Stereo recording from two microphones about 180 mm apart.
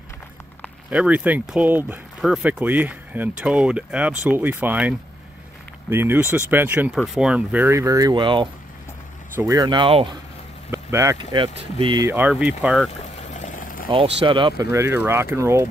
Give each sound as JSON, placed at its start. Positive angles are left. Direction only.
{"t": 0.8, "sound": "speech", "side_deg": -5}
{"t": 9.3, "sound": "speech", "side_deg": -15}
{"t": 10.7, "sound": "speech", "side_deg": -15}
{"t": 12.1, "sound": "speech", "side_deg": -10}
{"t": 13.3, "sound": "a sound", "side_deg": 40}
{"t": 14.2, "sound": "speech", "side_deg": -25}
{"t": 14.7, "sound": "speech", "side_deg": -15}